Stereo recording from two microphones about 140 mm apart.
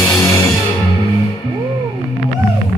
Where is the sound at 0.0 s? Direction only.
20° left (ahead or behind).